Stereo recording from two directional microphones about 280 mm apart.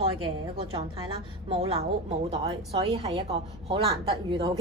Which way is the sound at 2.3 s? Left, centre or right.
Right.